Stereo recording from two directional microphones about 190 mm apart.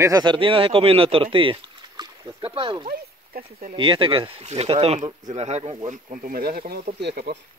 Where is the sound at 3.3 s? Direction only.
55° right (ahead or behind).